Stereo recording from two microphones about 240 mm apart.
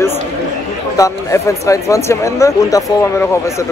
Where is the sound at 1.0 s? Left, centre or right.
Centre.